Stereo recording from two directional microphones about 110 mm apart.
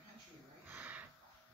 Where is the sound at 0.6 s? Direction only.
15° right (ahead or behind).